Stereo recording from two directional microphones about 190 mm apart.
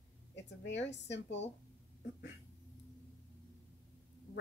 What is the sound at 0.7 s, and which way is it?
Speech, 65° left (ahead or behind).